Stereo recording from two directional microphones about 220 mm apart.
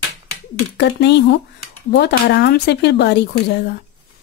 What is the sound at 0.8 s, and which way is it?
Speech, 50° left (ahead or behind).